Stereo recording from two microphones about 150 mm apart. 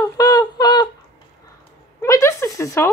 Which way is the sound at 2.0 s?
20° left (ahead or behind).